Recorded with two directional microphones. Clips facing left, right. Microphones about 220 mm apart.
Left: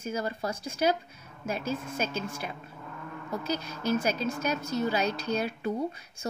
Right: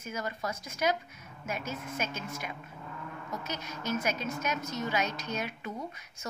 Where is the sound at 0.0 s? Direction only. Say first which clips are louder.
Left 4 dB; 30° left (ahead or behind).